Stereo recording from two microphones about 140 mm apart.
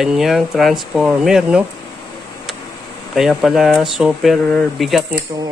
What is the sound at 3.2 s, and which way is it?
Speech, centre (ahead or behind).